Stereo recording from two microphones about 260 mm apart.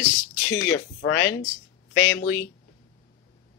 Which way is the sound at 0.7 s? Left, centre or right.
Left.